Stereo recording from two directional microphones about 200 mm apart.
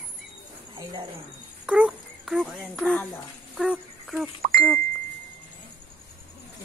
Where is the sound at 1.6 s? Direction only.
5° right (ahead or behind).